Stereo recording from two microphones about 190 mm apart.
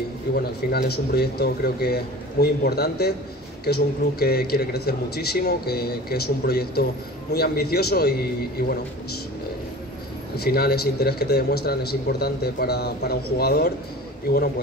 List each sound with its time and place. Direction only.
0.3 s a man's voice: 60° left (ahead or behind)
10.3 s a man's voice: 55° left (ahead or behind)